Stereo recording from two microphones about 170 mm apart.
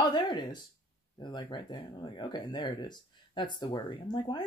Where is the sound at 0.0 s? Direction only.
25° left (ahead or behind).